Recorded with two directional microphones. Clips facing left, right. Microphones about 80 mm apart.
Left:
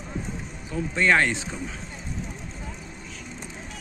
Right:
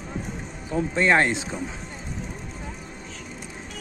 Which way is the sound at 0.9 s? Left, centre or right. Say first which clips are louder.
Right 1 dB; right.